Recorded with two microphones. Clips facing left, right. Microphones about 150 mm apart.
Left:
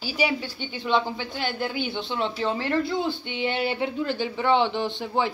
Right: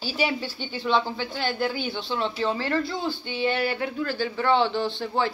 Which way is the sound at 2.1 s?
20° left (ahead or behind).